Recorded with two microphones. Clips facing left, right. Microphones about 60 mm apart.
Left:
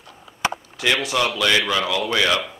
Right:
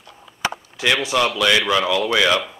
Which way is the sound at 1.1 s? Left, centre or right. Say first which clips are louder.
Right 3 dB; centre.